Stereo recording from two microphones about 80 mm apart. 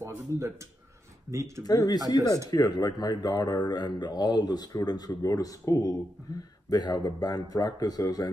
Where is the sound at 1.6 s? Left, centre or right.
Left.